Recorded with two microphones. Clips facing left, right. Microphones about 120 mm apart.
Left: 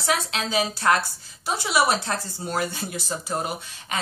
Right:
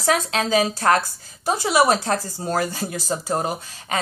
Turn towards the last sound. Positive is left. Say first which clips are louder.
# right 4 dB
turn(degrees=-35)  # may be behind; listen again after turning